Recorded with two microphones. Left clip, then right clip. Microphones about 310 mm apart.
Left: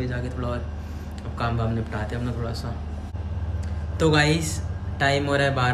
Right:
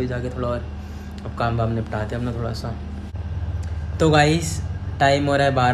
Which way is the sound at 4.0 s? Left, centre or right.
Centre.